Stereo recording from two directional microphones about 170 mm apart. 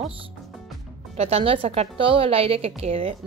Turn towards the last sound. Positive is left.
turn(degrees=-35)  # may be behind; listen again after turning